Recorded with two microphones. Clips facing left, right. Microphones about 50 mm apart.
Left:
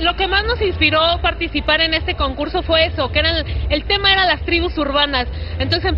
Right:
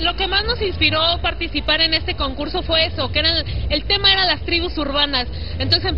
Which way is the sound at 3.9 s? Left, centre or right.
Centre.